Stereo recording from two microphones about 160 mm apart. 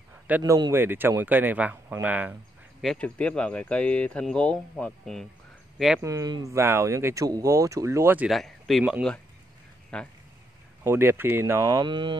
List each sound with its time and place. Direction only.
0.4 s speech: 20° right (ahead or behind)
2.8 s speech: 5° left (ahead or behind)
5.9 s speech: 20° right (ahead or behind)
8.3 s speech: centre (ahead or behind)
10.8 s speech: 15° right (ahead or behind)